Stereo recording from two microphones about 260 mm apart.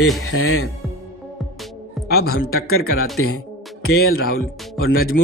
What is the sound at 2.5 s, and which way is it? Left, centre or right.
Speech, left.